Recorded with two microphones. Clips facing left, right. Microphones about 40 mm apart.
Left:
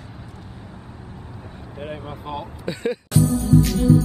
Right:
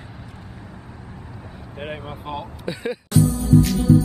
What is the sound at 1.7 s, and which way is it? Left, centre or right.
Speech, right.